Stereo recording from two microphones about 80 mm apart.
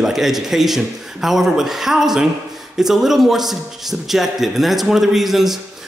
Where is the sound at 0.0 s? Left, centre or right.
Centre.